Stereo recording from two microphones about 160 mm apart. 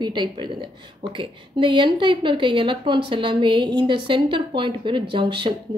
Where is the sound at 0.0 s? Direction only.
30° right (ahead or behind).